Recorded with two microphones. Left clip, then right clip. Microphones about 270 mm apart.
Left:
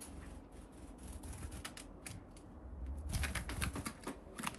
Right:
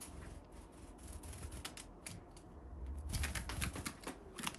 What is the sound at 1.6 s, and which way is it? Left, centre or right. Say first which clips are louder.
Typewriter: even; centre.